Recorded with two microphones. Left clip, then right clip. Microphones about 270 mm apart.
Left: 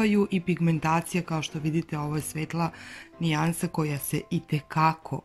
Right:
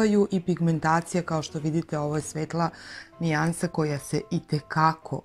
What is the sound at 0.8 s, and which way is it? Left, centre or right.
Speech, left.